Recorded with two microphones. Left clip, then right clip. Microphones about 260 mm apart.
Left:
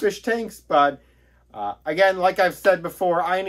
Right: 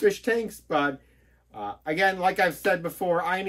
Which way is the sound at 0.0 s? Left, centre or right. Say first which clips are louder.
Left 1 dB; centre.